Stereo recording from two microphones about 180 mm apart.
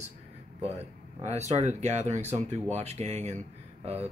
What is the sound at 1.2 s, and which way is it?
Speech, 40° right (ahead or behind).